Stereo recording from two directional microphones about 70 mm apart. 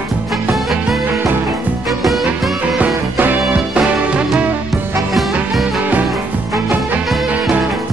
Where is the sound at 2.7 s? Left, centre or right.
Right.